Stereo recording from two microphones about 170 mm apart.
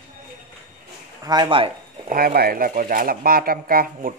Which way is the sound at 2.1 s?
60° right (ahead or behind).